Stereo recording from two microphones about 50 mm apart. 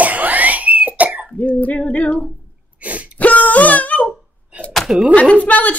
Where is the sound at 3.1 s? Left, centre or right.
Left.